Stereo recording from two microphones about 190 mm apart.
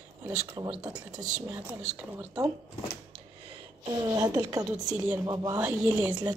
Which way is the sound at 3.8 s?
20° right (ahead or behind).